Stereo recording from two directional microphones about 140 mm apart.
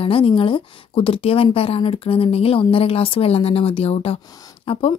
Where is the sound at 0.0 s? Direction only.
40° left (ahead or behind).